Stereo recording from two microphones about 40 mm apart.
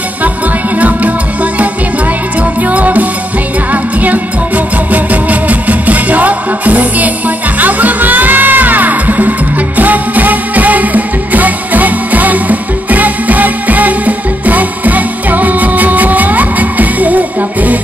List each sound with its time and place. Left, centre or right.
0.7 s music: right